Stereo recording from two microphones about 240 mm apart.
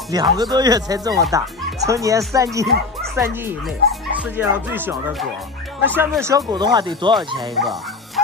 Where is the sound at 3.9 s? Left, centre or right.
Centre.